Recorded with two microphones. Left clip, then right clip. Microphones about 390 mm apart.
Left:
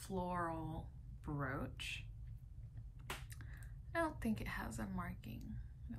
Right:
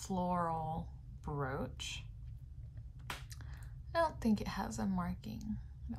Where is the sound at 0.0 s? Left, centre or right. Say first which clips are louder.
Right 5 dB; centre.